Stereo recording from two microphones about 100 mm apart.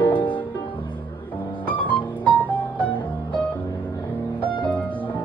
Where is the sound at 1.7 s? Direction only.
15° left (ahead or behind).